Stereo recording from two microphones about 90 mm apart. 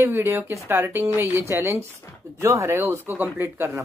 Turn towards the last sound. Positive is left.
turn(degrees=-25)  # may be behind; listen again after turning